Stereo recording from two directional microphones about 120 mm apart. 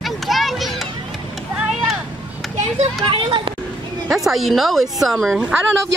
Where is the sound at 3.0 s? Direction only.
45° right (ahead or behind).